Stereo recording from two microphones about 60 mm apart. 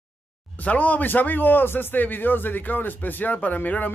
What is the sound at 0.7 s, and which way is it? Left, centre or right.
A man's voice, left.